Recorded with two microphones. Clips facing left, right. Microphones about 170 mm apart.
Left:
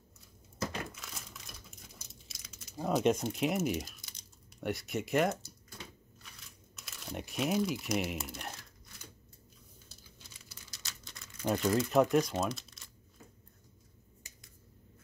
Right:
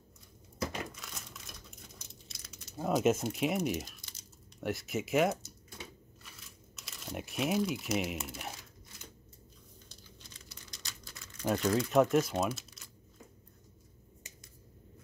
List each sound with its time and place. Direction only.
0.8 s crumpling: centre (ahead or behind)
9.8 s a sound: 5° left (ahead or behind)
10.9 s crumpling: centre (ahead or behind)